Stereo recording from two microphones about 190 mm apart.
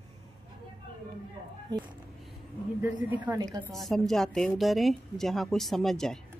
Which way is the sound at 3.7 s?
Centre (ahead or behind).